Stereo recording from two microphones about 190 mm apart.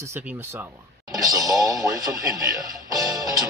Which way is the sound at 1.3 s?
20° right (ahead or behind).